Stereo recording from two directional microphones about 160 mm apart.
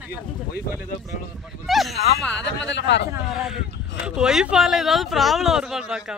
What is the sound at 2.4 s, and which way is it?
Speech, 90° left.